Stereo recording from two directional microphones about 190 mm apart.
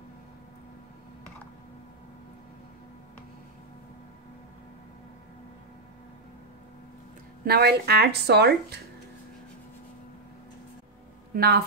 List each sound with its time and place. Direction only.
7.4 s speech: 55° right (ahead or behind)
11.3 s a woman's voice: 55° right (ahead or behind)